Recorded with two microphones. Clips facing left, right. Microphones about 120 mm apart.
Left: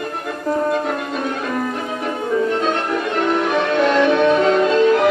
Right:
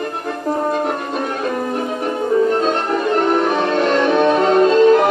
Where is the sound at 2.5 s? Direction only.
40° right (ahead or behind).